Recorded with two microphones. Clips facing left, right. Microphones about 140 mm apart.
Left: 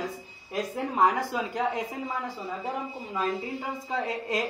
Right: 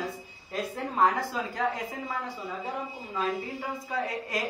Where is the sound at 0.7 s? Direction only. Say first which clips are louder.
Left 1 dB; 15° left (ahead or behind).